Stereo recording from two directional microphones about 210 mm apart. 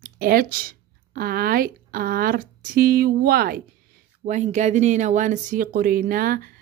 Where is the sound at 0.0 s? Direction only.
45° right (ahead or behind).